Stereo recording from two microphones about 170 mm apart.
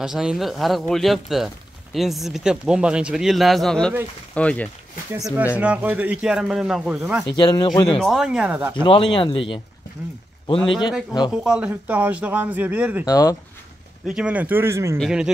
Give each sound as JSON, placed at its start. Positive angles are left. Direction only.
{"t": 0.0, "sound": "speech", "side_deg": -5}
{"t": 5.2, "sound": "speech", "side_deg": -10}
{"t": 7.2, "sound": "speech", "side_deg": 25}
{"t": 8.0, "sound": "speech", "side_deg": 0}
{"t": 8.8, "sound": "speech", "side_deg": 30}
{"t": 11.4, "sound": "speech", "side_deg": -5}
{"t": 13.0, "sound": "speech", "side_deg": 20}
{"t": 14.0, "sound": "speech", "side_deg": -5}
{"t": 15.0, "sound": "speech", "side_deg": -5}